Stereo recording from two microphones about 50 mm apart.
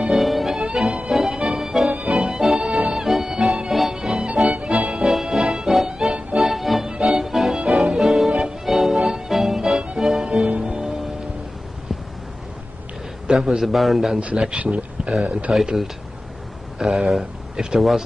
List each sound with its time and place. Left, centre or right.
0.1 s music: centre
0.6 s music: centre
1.1 s music: centre
1.9 s music: right
2.1 s music: centre
4.5 s music: right
5.0 s music: centre
5.9 s music: centre
8.3 s music: centre
8.6 s music: centre
10.4 s music: right
13.3 s a man's voice: centre
14.2 s speech: right
15.5 s a man's voice: centre